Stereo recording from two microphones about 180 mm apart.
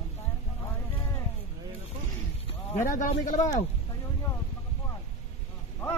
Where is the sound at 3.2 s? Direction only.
45° left (ahead or behind).